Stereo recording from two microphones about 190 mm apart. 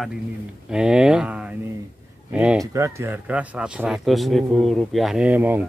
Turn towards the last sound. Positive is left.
turn(degrees=-10)  # may be behind; listen again after turning